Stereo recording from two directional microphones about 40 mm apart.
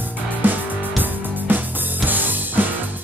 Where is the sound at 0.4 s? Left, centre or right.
Right.